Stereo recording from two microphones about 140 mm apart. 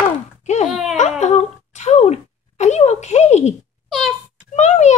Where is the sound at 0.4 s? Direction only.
55° left (ahead or behind).